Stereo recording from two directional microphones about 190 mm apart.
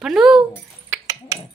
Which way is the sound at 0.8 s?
15° right (ahead or behind).